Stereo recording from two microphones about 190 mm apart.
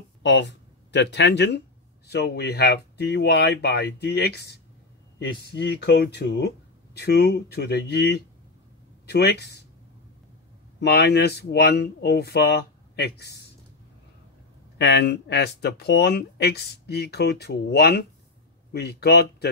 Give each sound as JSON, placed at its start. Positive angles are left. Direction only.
{"t": 0.2, "sound": "speech", "side_deg": 65}
{"t": 10.8, "sound": "speech", "side_deg": 60}
{"t": 14.8, "sound": "speech", "side_deg": 65}